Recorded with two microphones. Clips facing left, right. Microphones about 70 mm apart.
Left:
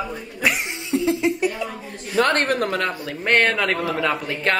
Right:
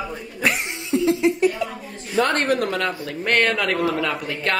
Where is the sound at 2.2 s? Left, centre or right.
Left.